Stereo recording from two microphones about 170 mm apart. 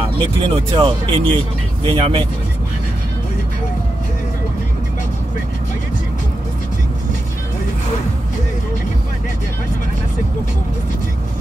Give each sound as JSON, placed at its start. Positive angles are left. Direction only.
{"t": 0.2, "sound": "speech", "side_deg": -30}